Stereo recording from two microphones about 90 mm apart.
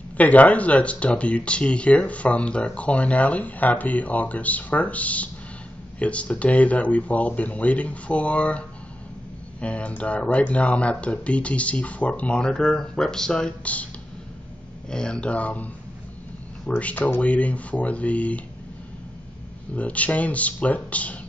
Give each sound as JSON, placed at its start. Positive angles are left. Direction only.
{"t": 0.2, "sound": "speech", "side_deg": 15}
{"t": 14.9, "sound": "speech", "side_deg": 10}
{"t": 19.7, "sound": "speech", "side_deg": 15}